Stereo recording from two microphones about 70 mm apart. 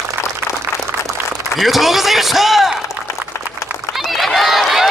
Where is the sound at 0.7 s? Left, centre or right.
Left.